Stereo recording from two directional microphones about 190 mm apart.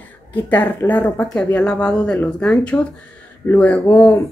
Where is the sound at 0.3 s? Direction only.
10° left (ahead or behind).